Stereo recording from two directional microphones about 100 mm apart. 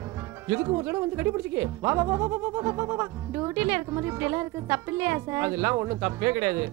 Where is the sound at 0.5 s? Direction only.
30° right (ahead or behind).